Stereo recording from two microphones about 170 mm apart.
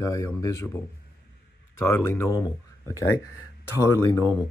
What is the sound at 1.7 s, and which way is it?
Speech, 15° left (ahead or behind).